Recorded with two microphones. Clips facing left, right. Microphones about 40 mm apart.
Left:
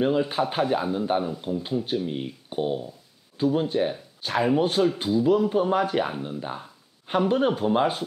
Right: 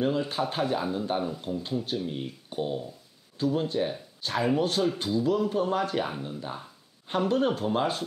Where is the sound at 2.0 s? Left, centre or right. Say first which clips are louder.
Left 3 dB; centre.